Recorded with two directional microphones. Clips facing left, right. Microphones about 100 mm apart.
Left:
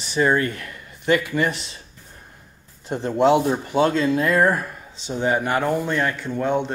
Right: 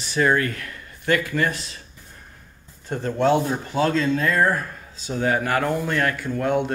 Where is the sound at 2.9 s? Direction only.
20° left (ahead or behind).